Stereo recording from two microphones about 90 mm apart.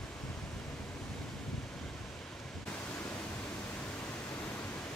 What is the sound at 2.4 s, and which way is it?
Pink noise, 15° left (ahead or behind).